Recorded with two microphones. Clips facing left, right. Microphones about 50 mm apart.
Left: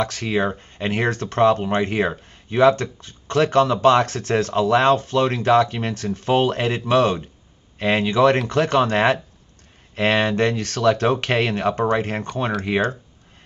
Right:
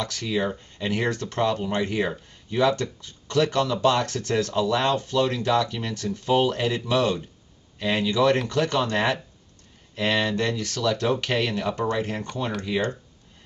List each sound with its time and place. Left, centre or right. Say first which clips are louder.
0.0 s speech: left 5 dB; left